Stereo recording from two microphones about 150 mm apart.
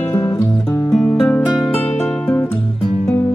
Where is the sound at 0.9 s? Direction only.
5° left (ahead or behind).